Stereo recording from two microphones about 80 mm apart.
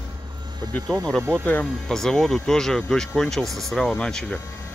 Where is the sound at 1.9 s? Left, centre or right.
Centre.